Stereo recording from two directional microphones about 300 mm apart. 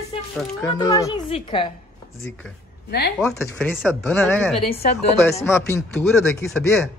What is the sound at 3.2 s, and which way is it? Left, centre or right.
Speech, centre.